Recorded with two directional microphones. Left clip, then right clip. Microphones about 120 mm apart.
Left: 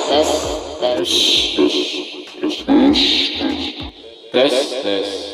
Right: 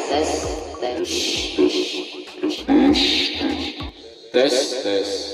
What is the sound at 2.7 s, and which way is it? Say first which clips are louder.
Music: left 3 dB; 65° left (ahead or behind).